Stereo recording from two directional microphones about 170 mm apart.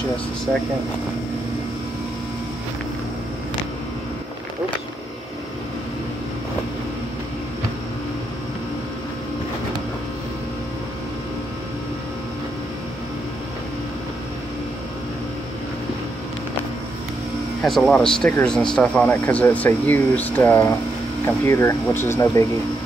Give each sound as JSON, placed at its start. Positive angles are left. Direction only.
{"t": 17.6, "sound": "speech", "side_deg": 0}